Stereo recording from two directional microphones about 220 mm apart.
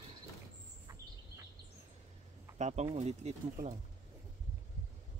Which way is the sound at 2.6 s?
30° right (ahead or behind).